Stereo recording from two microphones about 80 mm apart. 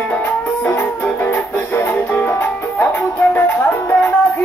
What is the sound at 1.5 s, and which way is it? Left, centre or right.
Music, left.